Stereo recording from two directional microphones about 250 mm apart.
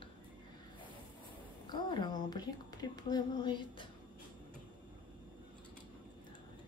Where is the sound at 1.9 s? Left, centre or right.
Centre.